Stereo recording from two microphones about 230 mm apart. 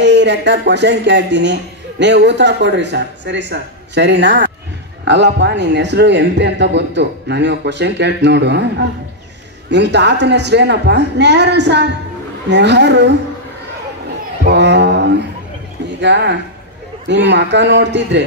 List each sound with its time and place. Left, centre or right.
0.0 s speech: right
14.4 s speech: right